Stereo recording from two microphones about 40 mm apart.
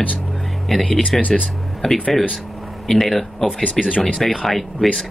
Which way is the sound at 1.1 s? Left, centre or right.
Centre.